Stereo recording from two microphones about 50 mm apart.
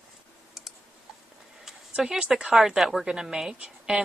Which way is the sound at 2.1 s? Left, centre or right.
Centre.